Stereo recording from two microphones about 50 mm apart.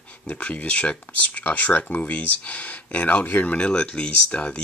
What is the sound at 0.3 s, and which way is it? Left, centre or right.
Speech, left.